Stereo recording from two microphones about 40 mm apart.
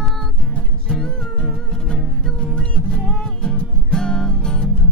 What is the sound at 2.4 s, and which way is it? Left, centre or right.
Music, left.